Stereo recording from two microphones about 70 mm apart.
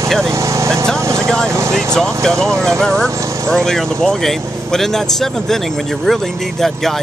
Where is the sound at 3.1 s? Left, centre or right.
Right.